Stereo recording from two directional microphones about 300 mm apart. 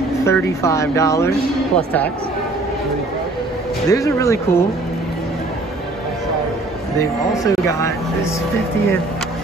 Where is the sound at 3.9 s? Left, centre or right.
Centre.